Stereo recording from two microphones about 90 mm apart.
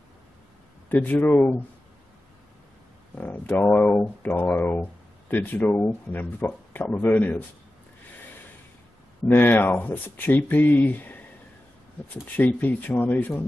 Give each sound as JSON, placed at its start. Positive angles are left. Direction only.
{"t": 0.8, "sound": "speech", "side_deg": 20}
{"t": 3.5, "sound": "speech", "side_deg": 20}
{"t": 9.3, "sound": "speech", "side_deg": 20}